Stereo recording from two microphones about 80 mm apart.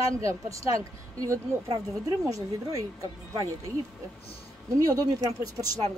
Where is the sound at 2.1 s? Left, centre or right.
Right.